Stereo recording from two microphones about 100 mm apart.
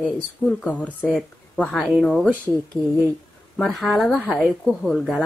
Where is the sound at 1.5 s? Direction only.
Centre (ahead or behind).